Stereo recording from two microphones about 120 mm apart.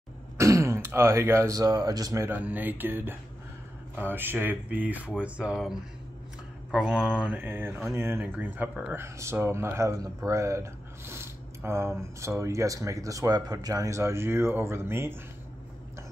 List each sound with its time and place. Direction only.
0.4 s speech: 25° right (ahead or behind)
2.2 s speech: 15° right (ahead or behind)